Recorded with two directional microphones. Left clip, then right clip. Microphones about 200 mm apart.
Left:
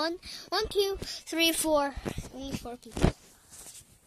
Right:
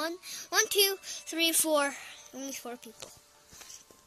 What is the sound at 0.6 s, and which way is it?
Speech, 10° right (ahead or behind).